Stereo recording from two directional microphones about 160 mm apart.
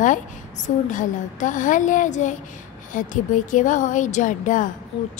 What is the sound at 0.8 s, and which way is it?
A woman's voice, 55° left (ahead or behind).